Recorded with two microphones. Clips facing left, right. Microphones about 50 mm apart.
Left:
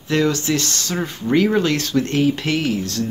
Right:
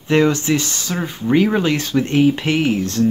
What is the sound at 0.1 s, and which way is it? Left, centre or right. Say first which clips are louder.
Speech: right 3 dB; right.